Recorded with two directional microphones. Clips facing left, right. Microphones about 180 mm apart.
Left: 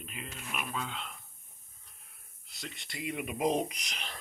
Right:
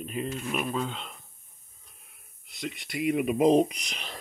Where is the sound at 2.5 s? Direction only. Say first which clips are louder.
Right 9 dB; 15° right (ahead or behind).